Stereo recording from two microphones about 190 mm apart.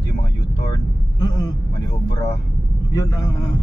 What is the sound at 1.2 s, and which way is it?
Vehicle, 20° left (ahead or behind).